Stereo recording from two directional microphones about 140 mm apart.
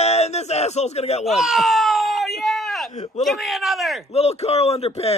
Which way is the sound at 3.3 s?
Centre (ahead or behind).